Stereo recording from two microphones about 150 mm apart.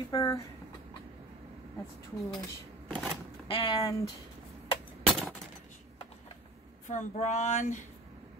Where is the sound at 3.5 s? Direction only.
30° left (ahead or behind).